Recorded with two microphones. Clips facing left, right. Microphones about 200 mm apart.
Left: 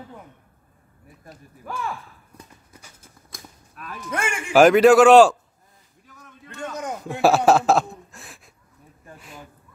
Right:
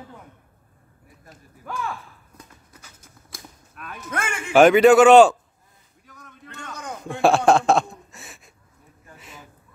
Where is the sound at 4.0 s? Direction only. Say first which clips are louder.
Left 2 dB; 10° left (ahead or behind).